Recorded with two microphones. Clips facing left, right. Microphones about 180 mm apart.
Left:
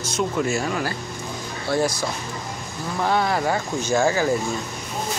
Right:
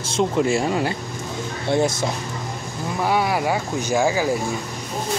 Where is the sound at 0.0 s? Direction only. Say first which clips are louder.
Right 3 dB; 30° right (ahead or behind).